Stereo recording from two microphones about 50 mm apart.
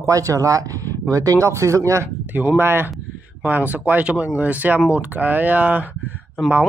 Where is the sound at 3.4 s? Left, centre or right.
Right.